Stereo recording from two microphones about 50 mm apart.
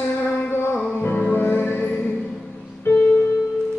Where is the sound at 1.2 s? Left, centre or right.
Left.